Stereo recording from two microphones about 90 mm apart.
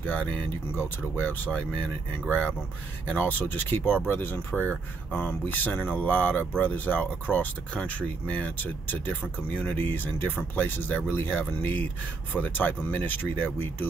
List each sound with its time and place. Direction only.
0.0 s speech: 15° left (ahead or behind)